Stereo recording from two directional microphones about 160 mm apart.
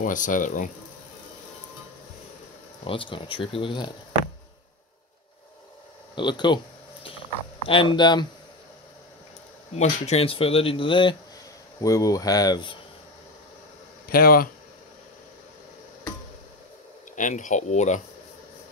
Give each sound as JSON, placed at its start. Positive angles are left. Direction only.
{"t": 0.0, "sound": "speech", "side_deg": 55}
{"t": 2.8, "sound": "speech", "side_deg": 35}
{"t": 6.1, "sound": "a sound", "side_deg": 30}
{"t": 7.6, "sound": "speech", "side_deg": 35}
{"t": 9.8, "sound": "speech", "side_deg": 40}
{"t": 11.8, "sound": "speech", "side_deg": 20}
{"t": 14.0, "sound": "speech", "side_deg": 65}
{"t": 17.1, "sound": "speech", "side_deg": 50}